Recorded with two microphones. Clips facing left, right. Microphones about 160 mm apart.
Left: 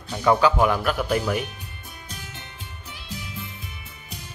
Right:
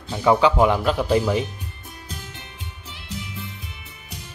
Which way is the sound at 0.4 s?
20° right (ahead or behind).